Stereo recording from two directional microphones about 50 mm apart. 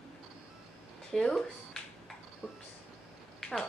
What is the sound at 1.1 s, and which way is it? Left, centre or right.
Speech, centre.